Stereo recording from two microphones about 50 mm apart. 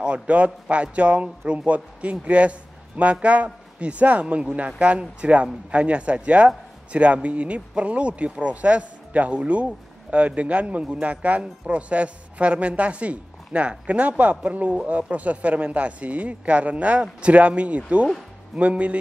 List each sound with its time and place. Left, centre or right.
0.0 s a man's voice: right